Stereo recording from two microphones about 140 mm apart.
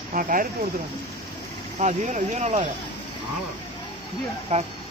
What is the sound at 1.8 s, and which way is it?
Speech, 60° right (ahead or behind).